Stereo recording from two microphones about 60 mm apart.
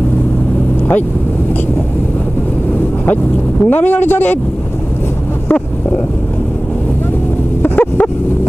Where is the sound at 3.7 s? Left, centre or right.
Left.